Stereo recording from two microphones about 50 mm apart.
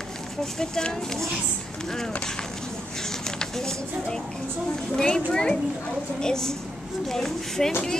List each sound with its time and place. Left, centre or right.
0.4 s speech: centre
3.3 s speech: centre